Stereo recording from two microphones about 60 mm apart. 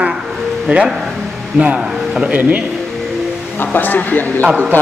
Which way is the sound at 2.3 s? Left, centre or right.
Right.